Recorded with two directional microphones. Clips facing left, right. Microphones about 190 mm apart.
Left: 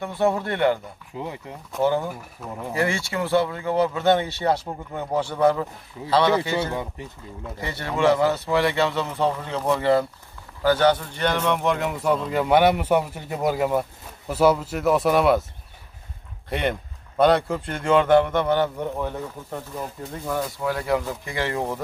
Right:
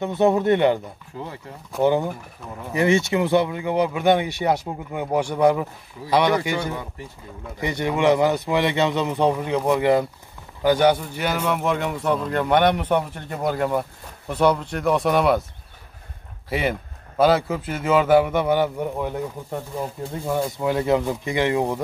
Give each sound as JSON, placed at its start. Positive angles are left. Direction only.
{"t": 0.0, "sound": "speech", "side_deg": -20}
{"t": 1.1, "sound": "speech", "side_deg": 15}
{"t": 1.8, "sound": "speech", "side_deg": -20}
{"t": 6.7, "sound": "speech", "side_deg": 20}
{"t": 7.6, "sound": "speech", "side_deg": -15}
{"t": 16.4, "sound": "speech", "side_deg": -5}
{"t": 20.3, "sound": "speech", "side_deg": -25}